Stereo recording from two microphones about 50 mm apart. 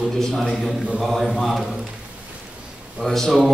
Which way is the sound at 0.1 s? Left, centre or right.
Centre.